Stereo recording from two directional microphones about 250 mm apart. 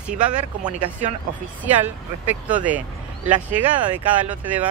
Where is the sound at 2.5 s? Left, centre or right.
Centre.